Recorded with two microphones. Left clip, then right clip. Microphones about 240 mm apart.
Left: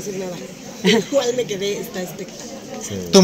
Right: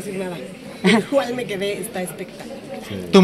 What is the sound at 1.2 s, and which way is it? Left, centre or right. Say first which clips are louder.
Speech: left 3 dB; right.